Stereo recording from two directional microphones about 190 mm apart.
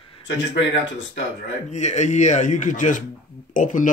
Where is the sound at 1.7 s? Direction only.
40° left (ahead or behind).